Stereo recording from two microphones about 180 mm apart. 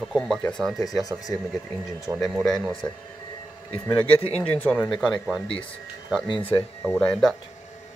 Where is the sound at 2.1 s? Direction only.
Centre (ahead or behind).